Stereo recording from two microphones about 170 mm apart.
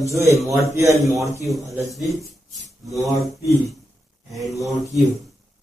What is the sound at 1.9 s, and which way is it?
Speech, centre (ahead or behind).